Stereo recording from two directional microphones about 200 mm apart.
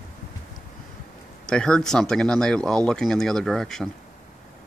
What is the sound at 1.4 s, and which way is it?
Speech, 5° left (ahead or behind).